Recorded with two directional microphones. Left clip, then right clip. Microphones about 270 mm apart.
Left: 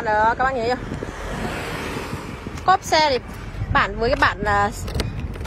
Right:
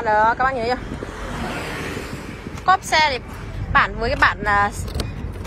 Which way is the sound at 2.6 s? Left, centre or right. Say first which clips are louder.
Even; centre.